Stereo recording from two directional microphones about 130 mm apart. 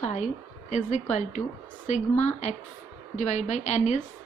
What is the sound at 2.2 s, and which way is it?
A woman's voice, 60° left (ahead or behind).